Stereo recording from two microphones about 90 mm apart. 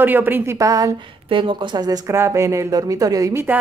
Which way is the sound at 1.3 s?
70° right (ahead or behind).